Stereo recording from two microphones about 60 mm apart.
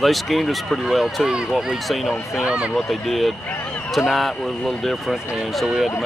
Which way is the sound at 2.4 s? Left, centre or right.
Centre.